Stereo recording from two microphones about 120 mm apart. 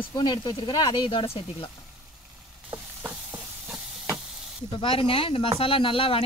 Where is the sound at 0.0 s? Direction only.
40° left (ahead or behind).